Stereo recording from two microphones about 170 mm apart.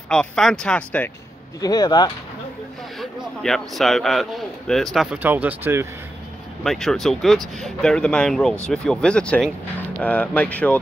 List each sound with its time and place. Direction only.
0.1 s speech: 5° left (ahead or behind)
1.6 s speech: 25° left (ahead or behind)
3.0 s speech: centre (ahead or behind)
6.6 s speech: centre (ahead or behind)